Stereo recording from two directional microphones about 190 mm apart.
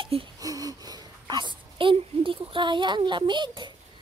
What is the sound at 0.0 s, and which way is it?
Speech, 25° right (ahead or behind).